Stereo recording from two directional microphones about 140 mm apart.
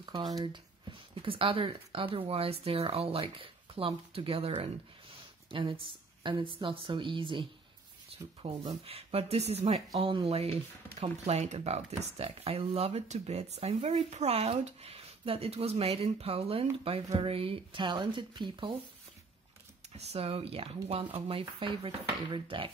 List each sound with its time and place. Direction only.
0.0 s speech: 30° right (ahead or behind)
20.0 s speech: 45° right (ahead or behind)